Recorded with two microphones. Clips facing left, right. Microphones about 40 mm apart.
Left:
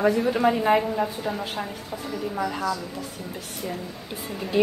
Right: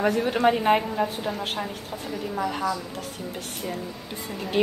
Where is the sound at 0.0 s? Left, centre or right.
Right.